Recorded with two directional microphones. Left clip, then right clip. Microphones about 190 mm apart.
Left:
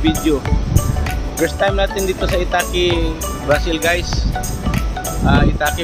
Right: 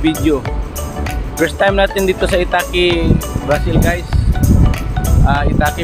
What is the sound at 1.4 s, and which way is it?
Speech, 25° right (ahead or behind).